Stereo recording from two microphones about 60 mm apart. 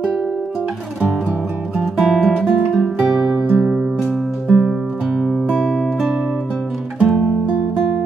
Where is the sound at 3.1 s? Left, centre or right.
Centre.